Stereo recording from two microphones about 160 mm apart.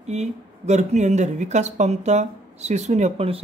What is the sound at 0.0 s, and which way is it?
Speech, 45° right (ahead or behind).